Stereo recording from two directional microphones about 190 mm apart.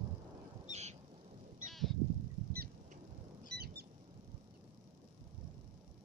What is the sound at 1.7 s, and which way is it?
Honk, centre (ahead or behind).